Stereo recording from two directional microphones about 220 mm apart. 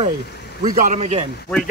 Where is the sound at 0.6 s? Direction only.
40° right (ahead or behind).